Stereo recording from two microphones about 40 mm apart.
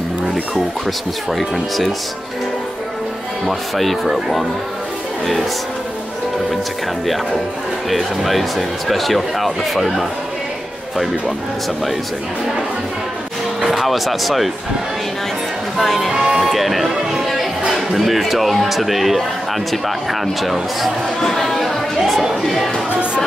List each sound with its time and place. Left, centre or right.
1.3 s speech: centre
3.4 s speech: centre
7.9 s speech: centre
13.6 s speech: centre
15.8 s speech: centre
16.1 s music: centre
16.4 s speech: centre
21.2 s chatter: centre